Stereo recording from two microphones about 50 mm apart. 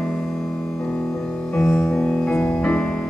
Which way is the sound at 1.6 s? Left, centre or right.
Centre.